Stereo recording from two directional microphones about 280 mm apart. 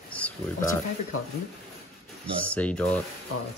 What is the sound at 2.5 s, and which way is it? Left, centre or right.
Speech, centre.